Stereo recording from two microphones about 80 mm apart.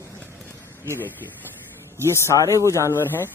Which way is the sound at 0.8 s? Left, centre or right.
Left.